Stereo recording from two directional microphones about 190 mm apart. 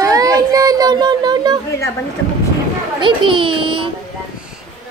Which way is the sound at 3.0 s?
25° right (ahead or behind).